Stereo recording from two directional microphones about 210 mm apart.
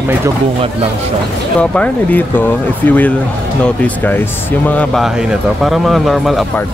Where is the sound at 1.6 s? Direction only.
5° left (ahead or behind).